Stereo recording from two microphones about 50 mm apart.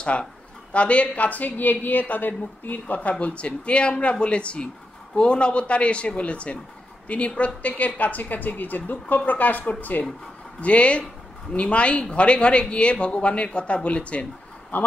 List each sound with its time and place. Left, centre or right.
0.0 s speech: left
10.6 s speech: left